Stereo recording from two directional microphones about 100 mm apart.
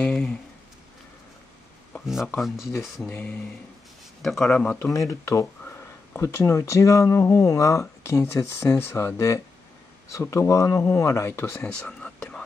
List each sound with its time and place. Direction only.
0.0 s a sound: 10° left (ahead or behind)
2.0 s speech: 5° right (ahead or behind)
3.1 s speech: 15° left (ahead or behind)
4.2 s speech: 5° left (ahead or behind)
4.9 s speech: 30° left (ahead or behind)
11.6 s speech: 10° left (ahead or behind)